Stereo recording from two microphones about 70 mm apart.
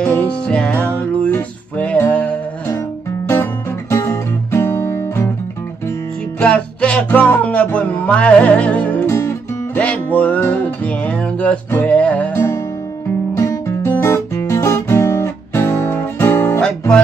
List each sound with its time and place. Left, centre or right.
0.0 s music: centre
3.9 s music: left
6.4 s music: centre
9.0 s music: left
9.8 s music: left
13.7 s guitar: left
16.6 s music: centre